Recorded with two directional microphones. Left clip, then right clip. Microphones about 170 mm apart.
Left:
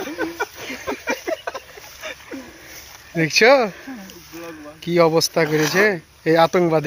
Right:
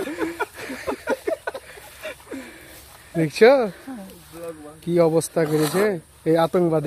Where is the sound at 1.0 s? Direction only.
35° right (ahead or behind).